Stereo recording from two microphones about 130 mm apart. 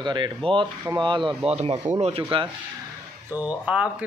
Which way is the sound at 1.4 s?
55° right (ahead or behind).